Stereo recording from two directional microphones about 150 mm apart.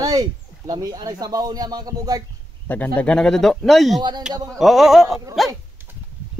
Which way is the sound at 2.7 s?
10° left (ahead or behind).